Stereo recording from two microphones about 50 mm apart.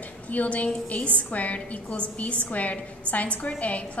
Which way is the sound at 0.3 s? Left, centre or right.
Left.